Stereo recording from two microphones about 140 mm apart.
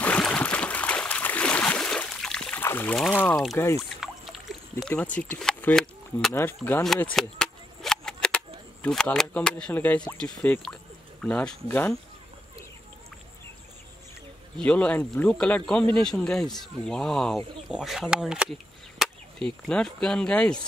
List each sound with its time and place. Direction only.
0.0 s a sound: 10° left (ahead or behind)
3.0 s speech: 10° left (ahead or behind)
4.0 s rowboat: centre (ahead or behind)
6.3 s speech: 15° left (ahead or behind)
6.8 s cap gun: centre (ahead or behind)
8.8 s speech: 5° left (ahead or behind)
14.6 s speech: 10° left (ahead or behind)